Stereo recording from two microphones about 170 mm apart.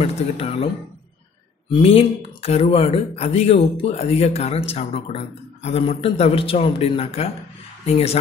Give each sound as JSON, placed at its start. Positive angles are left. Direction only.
{"t": 0.0, "sound": "speech", "side_deg": 35}
{"t": 1.7, "sound": "speech", "side_deg": 35}